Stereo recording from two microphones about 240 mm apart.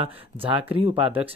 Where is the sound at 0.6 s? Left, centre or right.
Right.